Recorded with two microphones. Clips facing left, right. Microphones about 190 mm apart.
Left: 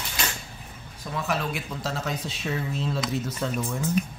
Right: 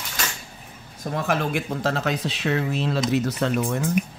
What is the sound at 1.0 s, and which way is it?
Speech, 55° right (ahead or behind).